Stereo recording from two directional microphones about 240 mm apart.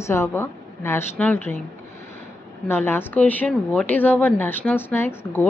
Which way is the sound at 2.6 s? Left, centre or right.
Centre.